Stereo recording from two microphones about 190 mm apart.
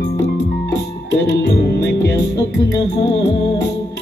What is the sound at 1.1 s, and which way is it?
Music, 60° left (ahead or behind).